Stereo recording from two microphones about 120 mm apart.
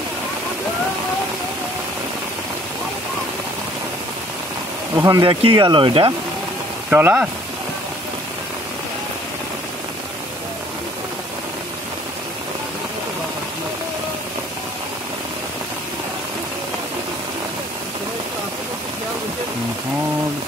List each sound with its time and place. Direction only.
4.9 s speech: 25° right (ahead or behind)
5.2 s speech: 45° right (ahead or behind)
6.9 s speech: 15° right (ahead or behind)